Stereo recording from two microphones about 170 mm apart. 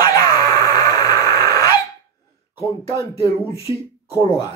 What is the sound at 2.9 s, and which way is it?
Speech, 20° left (ahead or behind).